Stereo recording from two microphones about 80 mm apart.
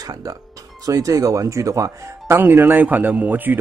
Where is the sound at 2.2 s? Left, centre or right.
Right.